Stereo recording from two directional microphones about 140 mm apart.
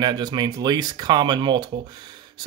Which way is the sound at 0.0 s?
30° right (ahead or behind).